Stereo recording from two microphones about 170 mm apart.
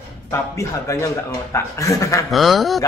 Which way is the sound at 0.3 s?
15° left (ahead or behind).